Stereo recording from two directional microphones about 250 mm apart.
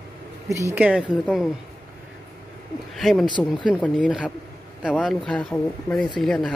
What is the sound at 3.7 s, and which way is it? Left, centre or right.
Speech, centre.